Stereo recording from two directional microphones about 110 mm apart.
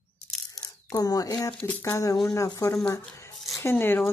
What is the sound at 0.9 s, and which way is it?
Speech, 35° left (ahead or behind).